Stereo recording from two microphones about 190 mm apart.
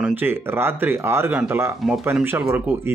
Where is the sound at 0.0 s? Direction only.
10° right (ahead or behind).